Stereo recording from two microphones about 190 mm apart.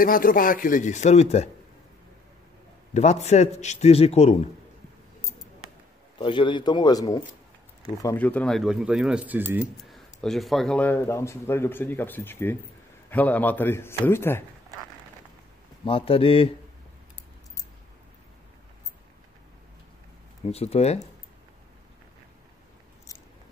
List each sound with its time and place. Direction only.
0.0 s speech: 45° left (ahead or behind)
2.9 s a man's voice: 35° left (ahead or behind)
6.1 s a man's voice: 25° left (ahead or behind)
15.8 s a man's voice: 30° left (ahead or behind)
20.5 s a man's voice: 30° left (ahead or behind)